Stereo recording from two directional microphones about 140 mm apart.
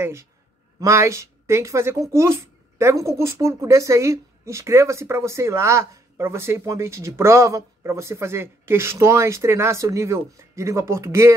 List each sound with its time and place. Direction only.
0.0 s a man's voice: 20° right (ahead or behind)